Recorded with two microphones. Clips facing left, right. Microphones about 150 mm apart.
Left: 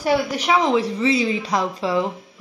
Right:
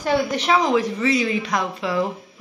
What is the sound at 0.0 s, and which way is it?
Speech, 10° left (ahead or behind).